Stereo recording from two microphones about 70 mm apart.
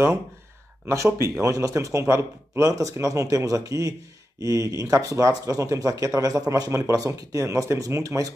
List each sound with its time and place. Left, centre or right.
0.8 s speech: right